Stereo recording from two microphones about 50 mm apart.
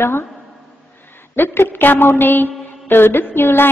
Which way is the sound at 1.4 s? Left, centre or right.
Left.